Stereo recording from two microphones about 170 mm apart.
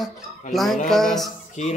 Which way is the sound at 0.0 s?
Centre (ahead or behind).